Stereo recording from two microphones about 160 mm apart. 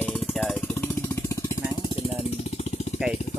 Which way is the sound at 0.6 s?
15° left (ahead or behind).